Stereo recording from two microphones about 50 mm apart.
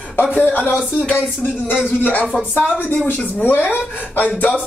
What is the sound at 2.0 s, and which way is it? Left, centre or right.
Music, left.